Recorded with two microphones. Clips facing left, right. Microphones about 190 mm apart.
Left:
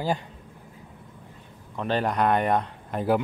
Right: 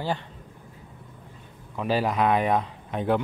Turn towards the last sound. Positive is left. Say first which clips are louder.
# left 1 dB
turn(degrees=0)  # may be behind; listen again after turning